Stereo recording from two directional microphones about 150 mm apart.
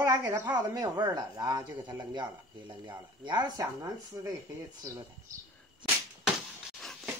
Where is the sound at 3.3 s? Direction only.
30° right (ahead or behind).